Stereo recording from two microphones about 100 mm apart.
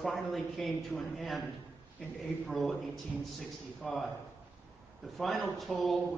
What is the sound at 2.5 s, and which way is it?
Speech, centre (ahead or behind).